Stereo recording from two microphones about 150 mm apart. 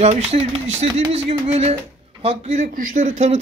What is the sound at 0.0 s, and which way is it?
A man's voice, 45° right (ahead or behind).